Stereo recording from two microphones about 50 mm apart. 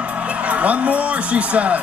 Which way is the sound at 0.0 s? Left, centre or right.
Right.